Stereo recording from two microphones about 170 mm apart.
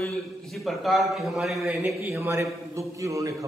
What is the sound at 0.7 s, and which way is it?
A man's voice, centre (ahead or behind).